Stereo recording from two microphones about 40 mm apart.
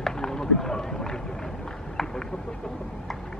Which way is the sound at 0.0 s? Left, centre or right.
Centre.